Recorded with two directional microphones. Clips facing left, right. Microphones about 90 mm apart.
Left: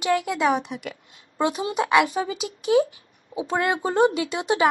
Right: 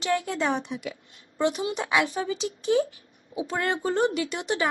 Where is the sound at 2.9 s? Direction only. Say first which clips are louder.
Left 3 dB; 20° left (ahead or behind).